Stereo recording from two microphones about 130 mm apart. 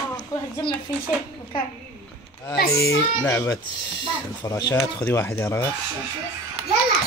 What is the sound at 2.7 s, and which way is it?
Speech, 25° left (ahead or behind).